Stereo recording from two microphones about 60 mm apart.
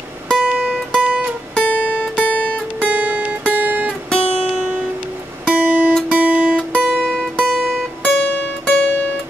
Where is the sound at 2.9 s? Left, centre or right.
Right.